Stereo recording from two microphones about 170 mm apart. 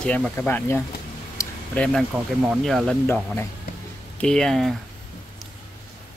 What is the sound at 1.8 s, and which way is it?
Speech, 5° left (ahead or behind).